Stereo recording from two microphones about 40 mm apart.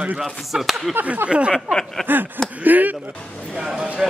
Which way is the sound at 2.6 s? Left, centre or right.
Right.